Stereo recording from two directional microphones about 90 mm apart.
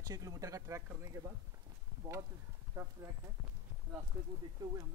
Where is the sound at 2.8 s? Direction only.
25° right (ahead or behind).